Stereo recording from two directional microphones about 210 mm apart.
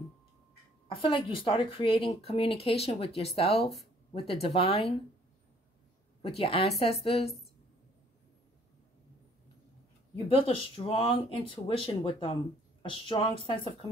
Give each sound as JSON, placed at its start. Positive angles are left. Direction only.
{"t": 0.8, "sound": "a woman's voice", "side_deg": 25}
{"t": 6.2, "sound": "speech", "side_deg": 25}
{"t": 10.1, "sound": "speech", "side_deg": 25}